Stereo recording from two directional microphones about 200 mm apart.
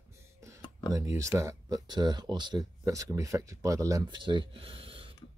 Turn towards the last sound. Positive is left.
turn(degrees=-25)  # may be behind; listen again after turning